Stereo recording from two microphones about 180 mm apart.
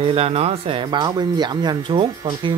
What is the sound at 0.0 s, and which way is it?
Speech, 30° right (ahead or behind).